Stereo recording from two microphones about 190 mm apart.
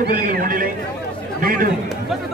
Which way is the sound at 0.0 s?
45° right (ahead or behind).